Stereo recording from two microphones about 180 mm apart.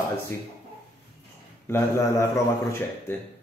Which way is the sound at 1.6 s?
15° left (ahead or behind).